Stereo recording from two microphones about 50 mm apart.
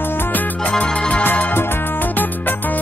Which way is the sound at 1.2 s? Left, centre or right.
Left.